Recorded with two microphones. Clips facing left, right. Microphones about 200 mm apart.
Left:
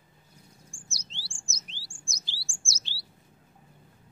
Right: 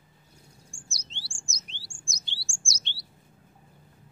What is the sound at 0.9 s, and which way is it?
Chirp, centre (ahead or behind).